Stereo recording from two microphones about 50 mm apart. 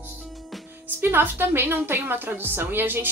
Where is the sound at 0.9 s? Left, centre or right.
Right.